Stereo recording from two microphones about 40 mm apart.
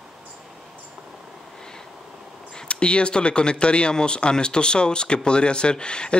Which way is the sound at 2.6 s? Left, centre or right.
Left.